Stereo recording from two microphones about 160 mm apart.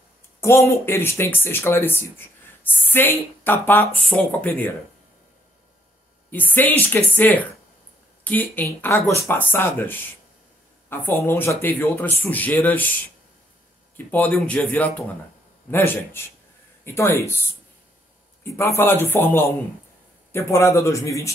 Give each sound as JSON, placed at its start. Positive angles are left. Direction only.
{"t": 0.4, "sound": "speech", "side_deg": 15}
{"t": 6.3, "sound": "speech", "side_deg": 10}
{"t": 13.9, "sound": "speech", "side_deg": 10}
{"t": 18.6, "sound": "a man's voice", "side_deg": 15}